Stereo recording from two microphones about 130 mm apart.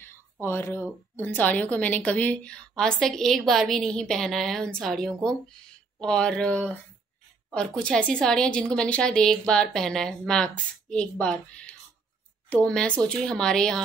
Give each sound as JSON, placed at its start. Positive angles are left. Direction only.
{"t": 0.0, "sound": "a sound", "side_deg": 20}
{"t": 1.1, "sound": "a woman's voice", "side_deg": 15}
{"t": 12.6, "sound": "a woman's voice", "side_deg": 10}